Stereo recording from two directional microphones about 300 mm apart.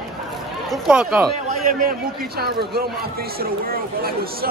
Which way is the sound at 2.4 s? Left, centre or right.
Right.